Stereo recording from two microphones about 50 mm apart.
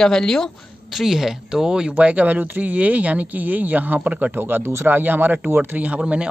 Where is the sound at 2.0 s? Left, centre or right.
Right.